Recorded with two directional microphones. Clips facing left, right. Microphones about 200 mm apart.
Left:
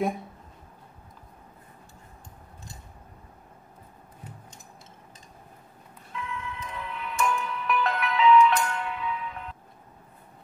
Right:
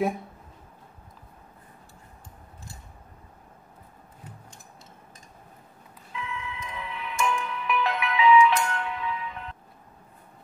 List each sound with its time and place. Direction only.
6.1 s music: centre (ahead or behind)